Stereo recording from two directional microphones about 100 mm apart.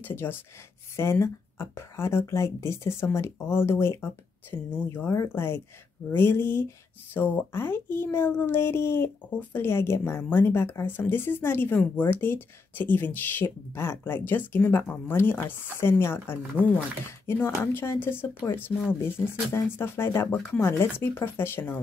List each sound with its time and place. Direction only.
0.0 s speech: 20° left (ahead or behind)